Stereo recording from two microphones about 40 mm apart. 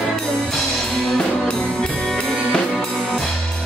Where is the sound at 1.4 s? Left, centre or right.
Left.